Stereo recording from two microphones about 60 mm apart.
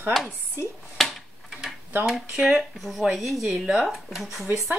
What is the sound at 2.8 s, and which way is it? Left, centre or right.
Speech, centre.